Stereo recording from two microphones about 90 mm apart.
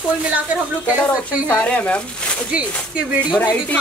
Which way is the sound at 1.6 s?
15° left (ahead or behind).